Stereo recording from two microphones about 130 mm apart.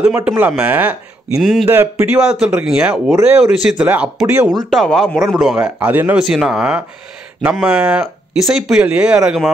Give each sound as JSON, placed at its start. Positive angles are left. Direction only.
{"t": 0.0, "sound": "speech", "side_deg": -10}
{"t": 1.7, "sound": "speech", "side_deg": -15}
{"t": 4.5, "sound": "speech", "side_deg": 0}
{"t": 6.2, "sound": "speech", "side_deg": -5}